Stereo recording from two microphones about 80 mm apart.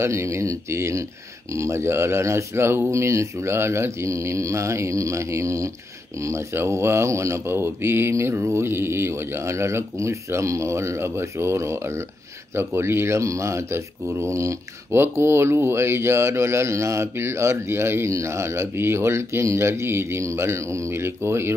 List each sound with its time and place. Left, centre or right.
0.0 s speech: right